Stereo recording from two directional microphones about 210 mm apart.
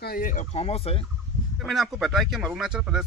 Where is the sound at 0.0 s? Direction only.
40° left (ahead or behind).